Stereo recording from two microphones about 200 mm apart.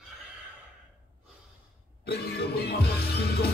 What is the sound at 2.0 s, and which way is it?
Music, 50° left (ahead or behind).